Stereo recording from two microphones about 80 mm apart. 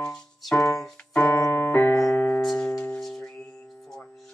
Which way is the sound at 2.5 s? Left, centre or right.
Centre.